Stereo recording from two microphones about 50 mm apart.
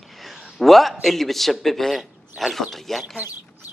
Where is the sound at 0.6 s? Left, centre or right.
Centre.